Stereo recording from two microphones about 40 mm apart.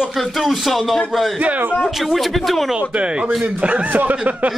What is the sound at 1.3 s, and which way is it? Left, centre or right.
Speech, right.